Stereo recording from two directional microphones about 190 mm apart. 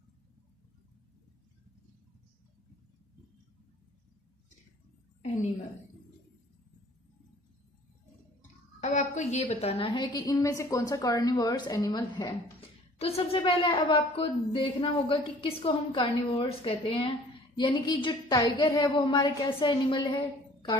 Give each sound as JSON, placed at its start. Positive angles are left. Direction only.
{"t": 8.8, "sound": "a woman's voice", "side_deg": 40}